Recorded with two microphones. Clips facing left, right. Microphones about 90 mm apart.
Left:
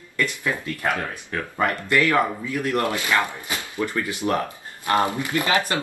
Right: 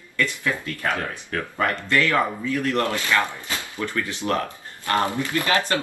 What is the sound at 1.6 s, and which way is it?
A man's voice, 15° left (ahead or behind).